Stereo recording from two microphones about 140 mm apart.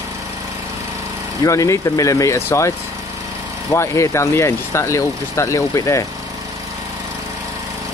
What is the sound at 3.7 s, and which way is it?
Speech, 20° left (ahead or behind).